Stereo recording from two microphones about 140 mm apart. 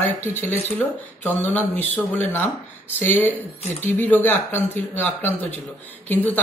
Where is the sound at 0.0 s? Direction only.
15° left (ahead or behind).